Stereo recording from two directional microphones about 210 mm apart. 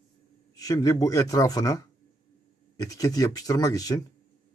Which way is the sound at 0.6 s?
15° left (ahead or behind).